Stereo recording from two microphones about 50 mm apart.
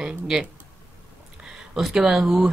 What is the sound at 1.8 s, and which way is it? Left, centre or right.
Speech, centre.